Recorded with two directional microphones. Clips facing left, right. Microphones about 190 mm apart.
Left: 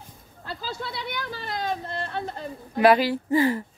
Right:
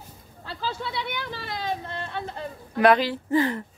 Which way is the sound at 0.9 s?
40° left (ahead or behind).